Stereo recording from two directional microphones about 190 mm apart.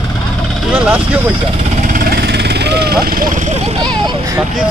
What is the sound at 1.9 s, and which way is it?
Vehicle, 50° right (ahead or behind).